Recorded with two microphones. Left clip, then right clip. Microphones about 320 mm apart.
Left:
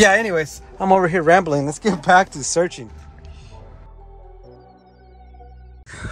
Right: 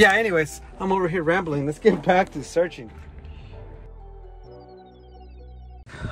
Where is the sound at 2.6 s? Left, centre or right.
Left.